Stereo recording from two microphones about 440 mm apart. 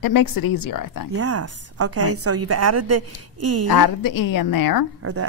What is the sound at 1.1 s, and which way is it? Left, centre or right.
A woman's voice, right.